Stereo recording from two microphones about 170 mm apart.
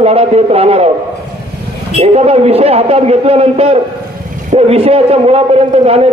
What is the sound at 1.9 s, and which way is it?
A man's voice, 40° right (ahead or behind).